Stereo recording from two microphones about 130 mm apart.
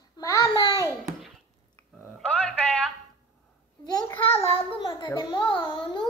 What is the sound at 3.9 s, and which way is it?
A child's voice, 30° left (ahead or behind).